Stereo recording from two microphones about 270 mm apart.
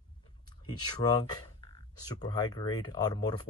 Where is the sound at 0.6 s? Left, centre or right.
Centre.